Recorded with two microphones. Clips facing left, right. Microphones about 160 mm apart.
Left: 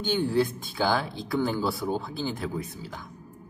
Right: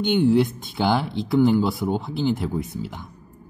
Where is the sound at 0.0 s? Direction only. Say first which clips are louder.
Right 6 dB; 20° right (ahead or behind).